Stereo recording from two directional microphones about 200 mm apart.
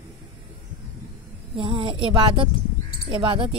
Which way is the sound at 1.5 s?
25° right (ahead or behind).